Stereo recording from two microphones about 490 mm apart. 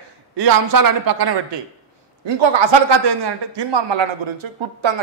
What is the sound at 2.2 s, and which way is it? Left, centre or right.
A man's voice, right.